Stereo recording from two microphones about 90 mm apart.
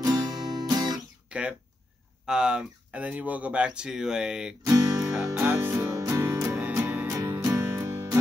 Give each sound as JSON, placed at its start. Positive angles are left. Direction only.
{"t": 0.0, "sound": "music", "side_deg": -45}
{"t": 1.3, "sound": "speech", "side_deg": -15}
{"t": 4.6, "sound": "music", "side_deg": -35}
{"t": 5.4, "sound": "music", "side_deg": -25}
{"t": 5.8, "sound": "music", "side_deg": -40}
{"t": 6.8, "sound": "music", "side_deg": -15}
{"t": 7.1, "sound": "music", "side_deg": -30}